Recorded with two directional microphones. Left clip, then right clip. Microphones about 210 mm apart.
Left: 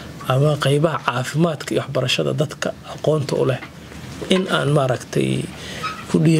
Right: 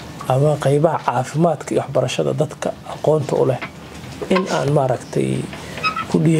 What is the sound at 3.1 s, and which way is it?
Speech, 45° left (ahead or behind).